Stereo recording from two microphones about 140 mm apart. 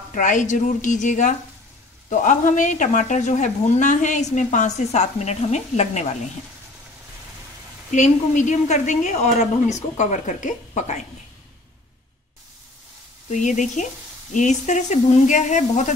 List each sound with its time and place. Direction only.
0.1 s speech: 65° left (ahead or behind)
7.9 s speech: 60° left (ahead or behind)
13.3 s speech: 60° left (ahead or behind)